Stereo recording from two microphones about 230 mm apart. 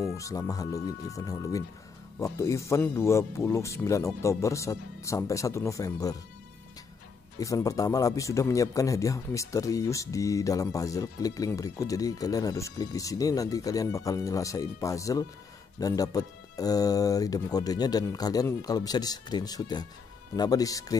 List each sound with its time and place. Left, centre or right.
0.0 s speech: centre
7.3 s speech: centre